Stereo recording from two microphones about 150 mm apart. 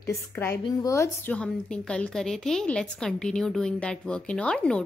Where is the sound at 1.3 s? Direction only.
5° left (ahead or behind).